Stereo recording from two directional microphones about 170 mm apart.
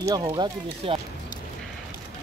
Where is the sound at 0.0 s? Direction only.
25° right (ahead or behind).